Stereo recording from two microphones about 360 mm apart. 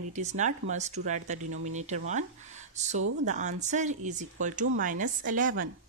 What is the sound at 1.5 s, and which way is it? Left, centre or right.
Speech, right.